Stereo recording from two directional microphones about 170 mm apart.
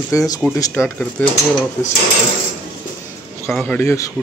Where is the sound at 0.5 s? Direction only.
15° left (ahead or behind).